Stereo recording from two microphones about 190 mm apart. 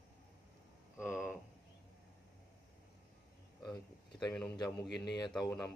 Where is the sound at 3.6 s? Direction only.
20° left (ahead or behind).